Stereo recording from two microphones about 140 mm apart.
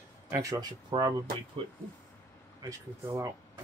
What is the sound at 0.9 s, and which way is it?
Speech, 35° right (ahead or behind).